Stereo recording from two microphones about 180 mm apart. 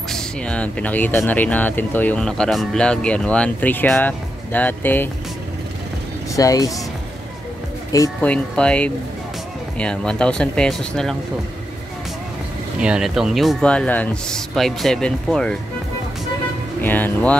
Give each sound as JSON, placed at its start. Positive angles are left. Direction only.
{"t": 0.1, "sound": "speech", "side_deg": 5}
{"t": 6.3, "sound": "speech", "side_deg": 20}
{"t": 8.2, "sound": "speech", "side_deg": 5}
{"t": 12.8, "sound": "speech", "side_deg": -5}
{"t": 16.8, "sound": "speech", "side_deg": 10}